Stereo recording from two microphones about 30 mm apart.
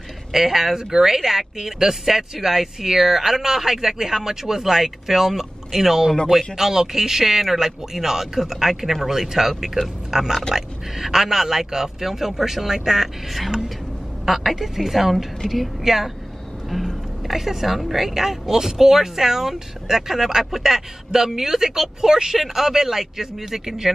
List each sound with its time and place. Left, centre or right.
0.3 s speech: centre
14.2 s a woman's voice: centre
15.8 s speech: centre
16.7 s a woman's voice: centre